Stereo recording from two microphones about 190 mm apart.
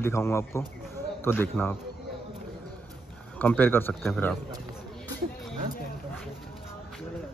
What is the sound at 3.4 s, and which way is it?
Speech, 10° left (ahead or behind).